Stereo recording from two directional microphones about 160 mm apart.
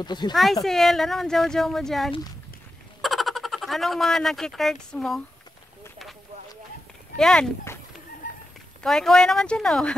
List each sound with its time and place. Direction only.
0.0 s speech: 25° left (ahead or behind)
0.3 s speech: centre (ahead or behind)
3.0 s a sound: centre (ahead or behind)
4.9 s speech: centre (ahead or behind)
7.2 s speech: 5° left (ahead or behind)
7.7 s a sound: 15° left (ahead or behind)
8.8 s speech: 5° left (ahead or behind)